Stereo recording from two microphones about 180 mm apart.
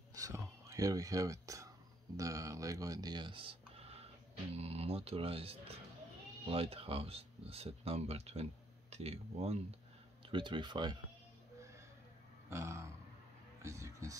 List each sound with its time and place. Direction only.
0.1 s whispering: 20° right (ahead or behind)
2.1 s speech: 20° right (ahead or behind)
12.4 s a sound: 15° right (ahead or behind)
13.6 s speech: 15° right (ahead or behind)